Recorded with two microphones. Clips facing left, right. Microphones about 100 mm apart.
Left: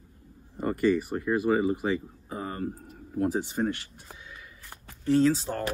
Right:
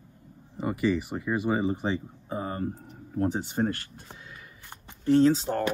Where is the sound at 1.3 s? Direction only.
20° right (ahead or behind).